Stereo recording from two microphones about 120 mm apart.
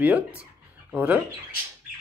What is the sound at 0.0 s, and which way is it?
Speech, 10° right (ahead or behind).